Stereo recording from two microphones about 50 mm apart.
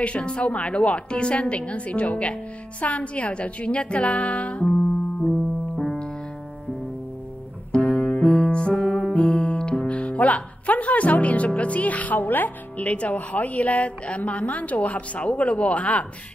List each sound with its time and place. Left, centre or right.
0.0 s a woman's voice: left
5.2 s keyboard: centre
7.7 s music: left
9.1 s speech: left